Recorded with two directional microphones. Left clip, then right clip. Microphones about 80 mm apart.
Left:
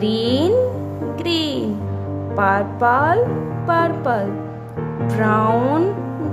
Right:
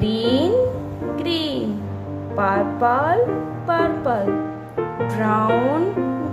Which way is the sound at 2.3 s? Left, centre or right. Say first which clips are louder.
Left 2 dB; left.